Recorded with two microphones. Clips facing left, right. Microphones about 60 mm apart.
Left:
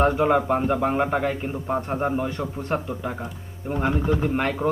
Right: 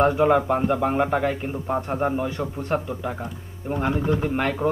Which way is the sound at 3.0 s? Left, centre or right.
Centre.